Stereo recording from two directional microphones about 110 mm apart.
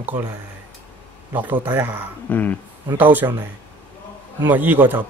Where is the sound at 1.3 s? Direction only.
15° right (ahead or behind).